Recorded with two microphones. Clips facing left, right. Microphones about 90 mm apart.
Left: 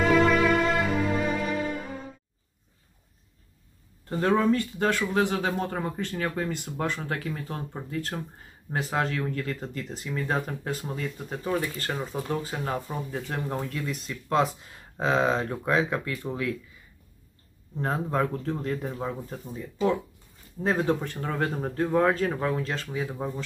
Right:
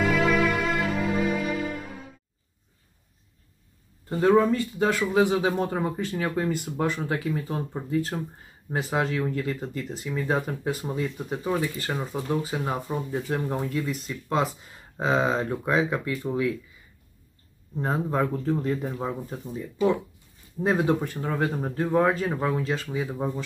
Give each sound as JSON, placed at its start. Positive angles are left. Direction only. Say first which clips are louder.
{"t": 0.0, "sound": "music", "louder": "left 2 dB", "side_deg": 0}
{"t": 4.4, "sound": "speech", "louder": "right 2 dB", "side_deg": -5}
{"t": 17.7, "sound": "speech", "louder": "right 1 dB", "side_deg": -5}